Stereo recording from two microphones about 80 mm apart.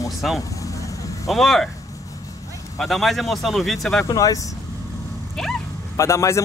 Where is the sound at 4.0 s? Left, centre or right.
Left.